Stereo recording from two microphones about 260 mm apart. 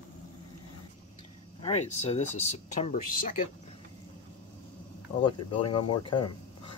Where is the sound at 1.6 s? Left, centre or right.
Left.